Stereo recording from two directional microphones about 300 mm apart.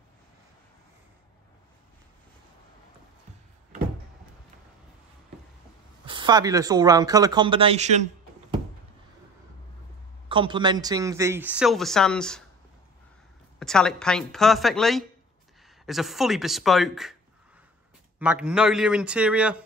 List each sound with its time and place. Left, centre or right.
6.0 s speech: centre
10.2 s speech: centre
13.6 s speech: centre
18.2 s speech: centre